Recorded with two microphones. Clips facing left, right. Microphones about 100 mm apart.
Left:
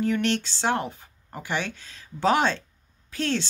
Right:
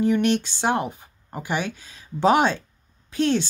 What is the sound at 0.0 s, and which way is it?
Speech, 15° right (ahead or behind).